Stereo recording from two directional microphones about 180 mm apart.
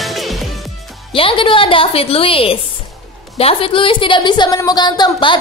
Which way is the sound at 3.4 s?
30° left (ahead or behind).